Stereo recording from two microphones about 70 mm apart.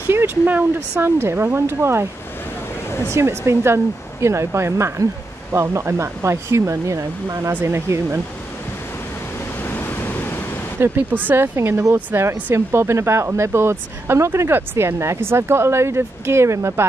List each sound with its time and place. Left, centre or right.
0.1 s speech: right
3.1 s speech: right
7.6 s speech: right
9.6 s waves: left
10.8 s speech: right